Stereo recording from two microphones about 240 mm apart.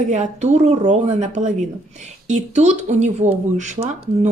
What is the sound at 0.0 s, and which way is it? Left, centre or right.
Speech, right.